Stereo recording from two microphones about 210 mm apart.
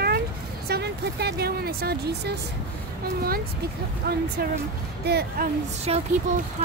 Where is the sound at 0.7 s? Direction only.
50° right (ahead or behind).